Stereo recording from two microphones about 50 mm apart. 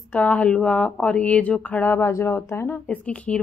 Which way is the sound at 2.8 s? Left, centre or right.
Left.